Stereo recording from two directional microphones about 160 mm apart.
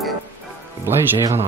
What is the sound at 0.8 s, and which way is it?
Speech, 15° right (ahead or behind).